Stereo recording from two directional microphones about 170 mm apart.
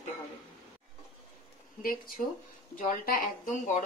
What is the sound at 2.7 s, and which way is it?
A woman's voice, 55° left (ahead or behind).